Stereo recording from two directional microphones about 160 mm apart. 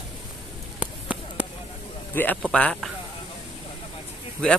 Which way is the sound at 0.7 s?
10° right (ahead or behind).